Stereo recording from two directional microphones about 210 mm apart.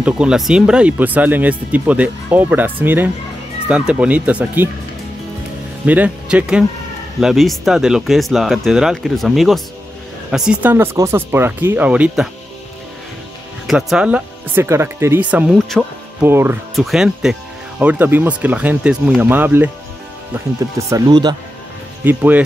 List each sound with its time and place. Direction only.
0.0 s speech: 5° right (ahead or behind)
5.9 s speech: 5° right (ahead or behind)
13.7 s speech: centre (ahead or behind)
20.9 s speech: 20° right (ahead or behind)
22.0 s speech: 10° right (ahead or behind)